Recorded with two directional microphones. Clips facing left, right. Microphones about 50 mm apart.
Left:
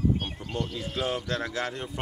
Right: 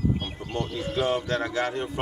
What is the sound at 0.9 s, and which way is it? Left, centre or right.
Speech, centre.